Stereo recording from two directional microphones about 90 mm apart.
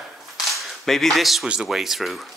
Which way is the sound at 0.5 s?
Centre (ahead or behind).